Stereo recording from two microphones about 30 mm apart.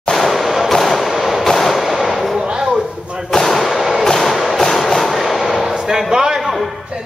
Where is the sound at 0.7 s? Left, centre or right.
Centre.